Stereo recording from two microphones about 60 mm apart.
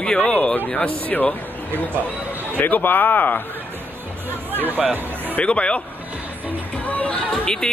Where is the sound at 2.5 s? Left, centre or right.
Left.